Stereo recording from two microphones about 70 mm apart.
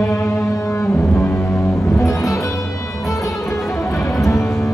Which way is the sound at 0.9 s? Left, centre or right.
Left.